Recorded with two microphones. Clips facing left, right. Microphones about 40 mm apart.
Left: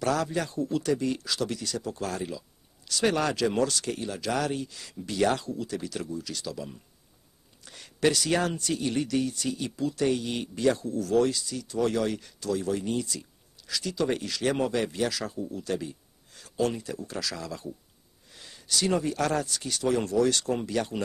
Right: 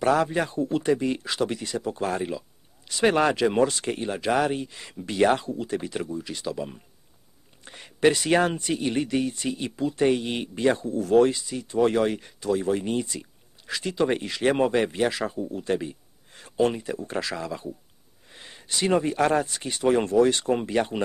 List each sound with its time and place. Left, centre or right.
0.0 s speech: right